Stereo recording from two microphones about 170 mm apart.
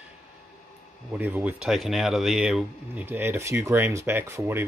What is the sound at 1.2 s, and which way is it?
Speech, 10° right (ahead or behind).